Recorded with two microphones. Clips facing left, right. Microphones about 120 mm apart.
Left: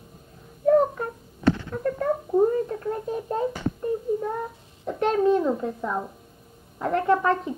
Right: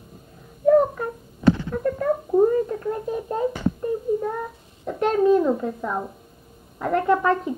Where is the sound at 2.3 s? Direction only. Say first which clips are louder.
Right 3 dB; 5° right (ahead or behind).